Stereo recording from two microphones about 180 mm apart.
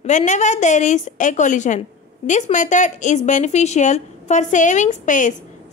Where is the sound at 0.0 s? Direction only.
40° left (ahead or behind).